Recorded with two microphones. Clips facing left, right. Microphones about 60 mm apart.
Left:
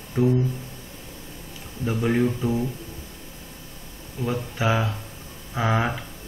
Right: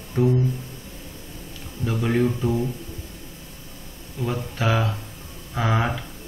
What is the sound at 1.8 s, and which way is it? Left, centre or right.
Speech, centre.